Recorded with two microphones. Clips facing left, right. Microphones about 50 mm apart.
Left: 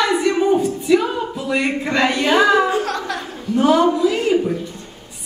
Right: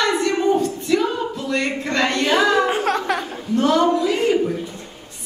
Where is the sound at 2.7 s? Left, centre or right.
Right.